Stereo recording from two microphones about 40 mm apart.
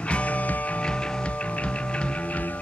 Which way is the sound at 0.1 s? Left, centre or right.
Left.